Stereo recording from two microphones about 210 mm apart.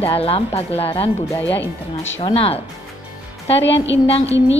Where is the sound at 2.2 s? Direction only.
25° left (ahead or behind).